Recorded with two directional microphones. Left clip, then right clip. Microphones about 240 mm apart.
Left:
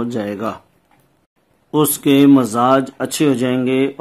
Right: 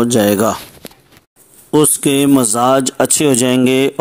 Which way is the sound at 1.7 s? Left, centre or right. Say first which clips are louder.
Right 2 dB; right.